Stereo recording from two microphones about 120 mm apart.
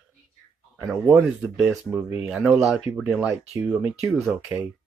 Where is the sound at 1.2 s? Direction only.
Centre (ahead or behind).